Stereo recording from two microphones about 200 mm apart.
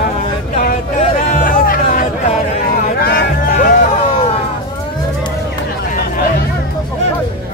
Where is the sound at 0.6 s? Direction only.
35° left (ahead or behind).